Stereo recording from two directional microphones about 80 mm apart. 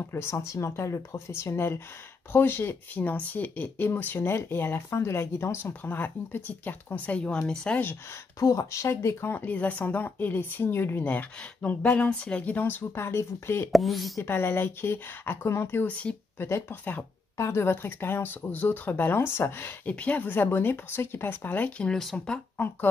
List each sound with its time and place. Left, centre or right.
0.1 s speech: left
7.2 s speech: centre
8.4 s speech: left
13.7 s a woman's voice: centre
14.2 s speech: left
16.4 s speech: left
19.9 s speech: centre